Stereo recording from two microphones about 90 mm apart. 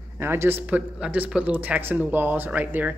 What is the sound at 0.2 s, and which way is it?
Speech, 25° right (ahead or behind).